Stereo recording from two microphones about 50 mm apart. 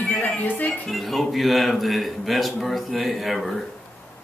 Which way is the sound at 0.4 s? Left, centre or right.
Left.